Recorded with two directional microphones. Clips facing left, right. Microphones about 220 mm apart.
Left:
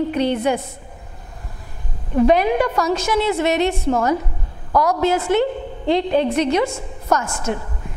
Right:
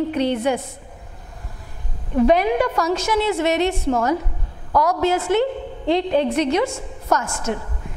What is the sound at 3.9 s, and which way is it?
A woman's voice, 25° left (ahead or behind).